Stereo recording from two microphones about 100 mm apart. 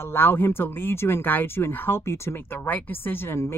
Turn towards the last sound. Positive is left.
turn(degrees=25)  # may be behind; listen again after turning